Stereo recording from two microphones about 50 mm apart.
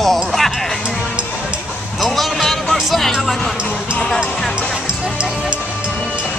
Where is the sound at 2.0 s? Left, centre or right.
Centre.